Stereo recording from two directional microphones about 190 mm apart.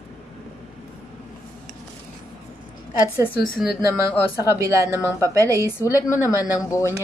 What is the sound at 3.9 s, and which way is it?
A woman's voice, 15° right (ahead or behind).